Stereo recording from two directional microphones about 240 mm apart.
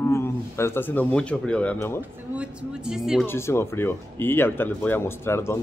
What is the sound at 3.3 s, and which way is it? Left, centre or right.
Speech, centre.